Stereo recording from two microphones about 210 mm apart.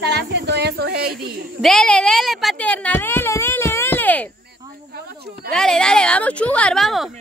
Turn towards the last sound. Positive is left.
turn(degrees=0)  # may be behind; listen again after turning